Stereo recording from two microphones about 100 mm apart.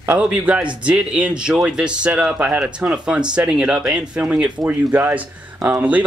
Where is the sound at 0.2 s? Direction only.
10° right (ahead or behind).